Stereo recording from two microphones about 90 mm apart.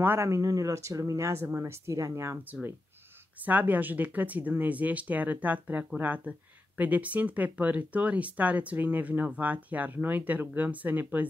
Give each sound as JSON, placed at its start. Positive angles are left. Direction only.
{"t": 0.0, "sound": "speech", "side_deg": -20}
{"t": 0.3, "sound": "speech", "side_deg": -40}
{"t": 3.3, "sound": "speech", "side_deg": -20}